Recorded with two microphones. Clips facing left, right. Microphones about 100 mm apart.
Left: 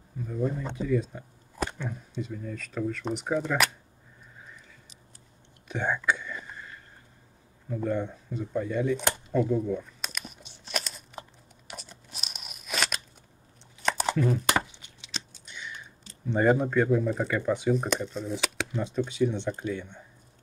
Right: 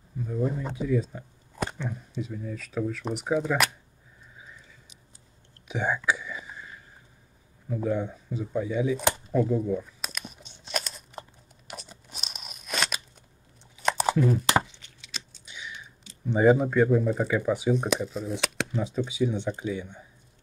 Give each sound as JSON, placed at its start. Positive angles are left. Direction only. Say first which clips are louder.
{"t": 0.2, "sound": "speech", "louder": "right 1 dB", "side_deg": -5}
{"t": 5.7, "sound": "whispering", "louder": "right 1 dB", "side_deg": -5}
{"t": 7.6, "sound": "speech", "louder": "right 1 dB", "side_deg": -5}
{"t": 9.5, "sound": "crumpling", "louder": "right 1 dB", "side_deg": -5}
{"t": 11.9, "sound": "crunch", "louder": "right 1 dB", "side_deg": 0}
{"t": 13.8, "sound": "a sound", "louder": "right 2 dB", "side_deg": -5}
{"t": 14.7, "sound": "chopping", "louder": "left 1 dB", "side_deg": 15}
{"t": 15.4, "sound": "computer keyboard", "louder": "even", "side_deg": -5}
{"t": 16.3, "sound": "speech", "louder": "right 3 dB", "side_deg": -5}